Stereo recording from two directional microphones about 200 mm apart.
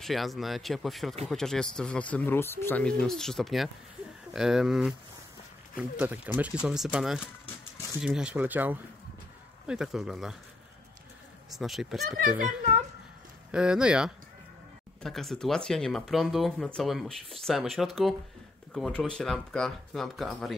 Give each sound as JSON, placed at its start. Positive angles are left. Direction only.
{"t": 0.0, "sound": "speech", "side_deg": 0}
{"t": 11.5, "sound": "speech", "side_deg": 0}
{"t": 12.4, "sound": "a woman's voice", "side_deg": -35}
{"t": 13.5, "sound": "speech", "side_deg": -5}